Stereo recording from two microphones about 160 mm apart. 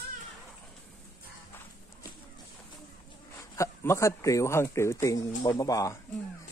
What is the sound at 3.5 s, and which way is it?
Speech, 15° left (ahead or behind).